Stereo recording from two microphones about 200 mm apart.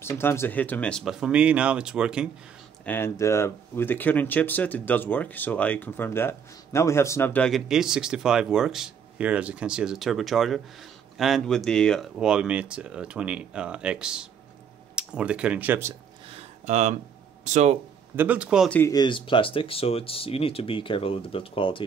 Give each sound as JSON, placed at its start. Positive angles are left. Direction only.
{"t": 0.0, "sound": "speech", "side_deg": 10}
{"t": 2.8, "sound": "speech", "side_deg": 10}
{"t": 16.3, "sound": "a sound", "side_deg": -30}
{"t": 17.5, "sound": "speech", "side_deg": -35}
{"t": 18.1, "sound": "speech", "side_deg": -10}
{"t": 18.7, "sound": "speech", "side_deg": 15}